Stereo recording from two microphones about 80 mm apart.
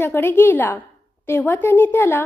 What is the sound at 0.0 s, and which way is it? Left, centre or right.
A woman's voice, left.